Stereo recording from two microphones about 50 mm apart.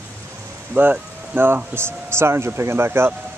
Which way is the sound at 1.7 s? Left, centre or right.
Right.